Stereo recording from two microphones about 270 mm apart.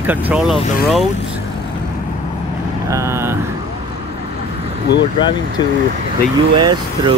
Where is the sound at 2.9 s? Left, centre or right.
Centre.